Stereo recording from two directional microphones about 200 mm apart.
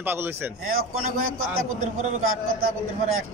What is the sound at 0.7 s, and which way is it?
A man's voice, 90° right.